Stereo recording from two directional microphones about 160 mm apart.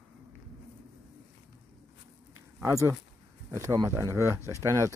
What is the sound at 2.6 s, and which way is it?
Speech, 15° right (ahead or behind).